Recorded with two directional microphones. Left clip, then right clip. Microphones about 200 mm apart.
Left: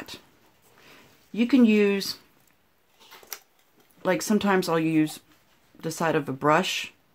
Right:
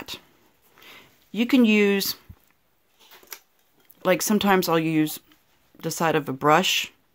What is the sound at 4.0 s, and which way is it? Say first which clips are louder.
Speech: right 3 dB; 35° right (ahead or behind).